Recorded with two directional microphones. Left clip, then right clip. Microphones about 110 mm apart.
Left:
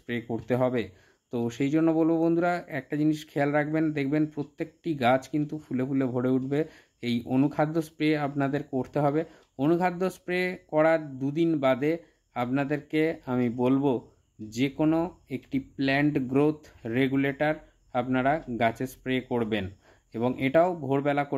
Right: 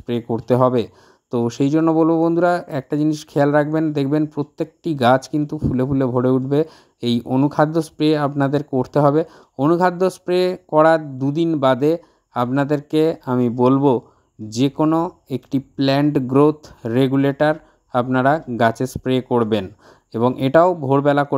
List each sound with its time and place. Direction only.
0.3 s speech: 50° right (ahead or behind)
5.4 s speech: 40° right (ahead or behind)
11.6 s speech: 60° right (ahead or behind)
20.6 s speech: 50° right (ahead or behind)